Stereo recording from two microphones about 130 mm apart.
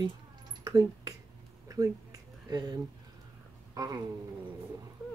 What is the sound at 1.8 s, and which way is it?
Speech, 30° right (ahead or behind).